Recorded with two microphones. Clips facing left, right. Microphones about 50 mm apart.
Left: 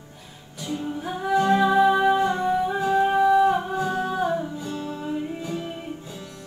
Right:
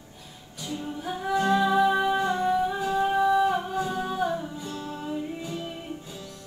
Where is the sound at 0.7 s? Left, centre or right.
Left.